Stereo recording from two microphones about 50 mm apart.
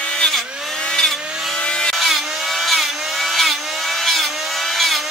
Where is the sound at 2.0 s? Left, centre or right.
Centre.